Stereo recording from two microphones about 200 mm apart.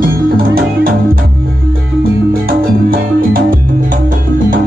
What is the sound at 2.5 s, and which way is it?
Music, 45° right (ahead or behind).